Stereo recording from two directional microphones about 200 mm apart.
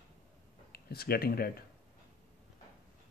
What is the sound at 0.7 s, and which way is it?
Speech, 50° left (ahead or behind).